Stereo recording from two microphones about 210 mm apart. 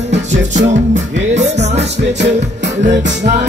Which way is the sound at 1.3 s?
30° right (ahead or behind).